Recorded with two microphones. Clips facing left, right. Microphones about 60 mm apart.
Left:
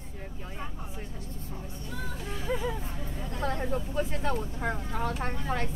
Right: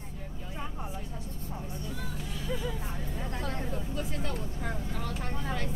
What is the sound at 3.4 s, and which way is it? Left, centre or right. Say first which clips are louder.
Vehicle: left 7 dB; left.